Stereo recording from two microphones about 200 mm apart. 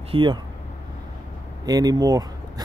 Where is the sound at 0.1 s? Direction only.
25° right (ahead or behind).